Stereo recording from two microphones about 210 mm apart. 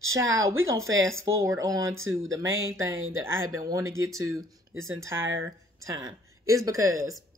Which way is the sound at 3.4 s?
15° right (ahead or behind).